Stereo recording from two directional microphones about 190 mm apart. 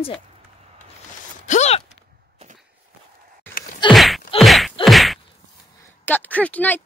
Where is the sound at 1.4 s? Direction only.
35° left (ahead or behind).